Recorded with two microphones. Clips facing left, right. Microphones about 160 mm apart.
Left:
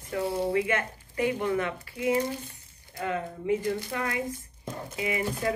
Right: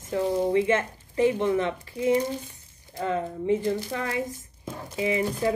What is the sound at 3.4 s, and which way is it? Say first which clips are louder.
Speech: right 2 dB; 25° right (ahead or behind).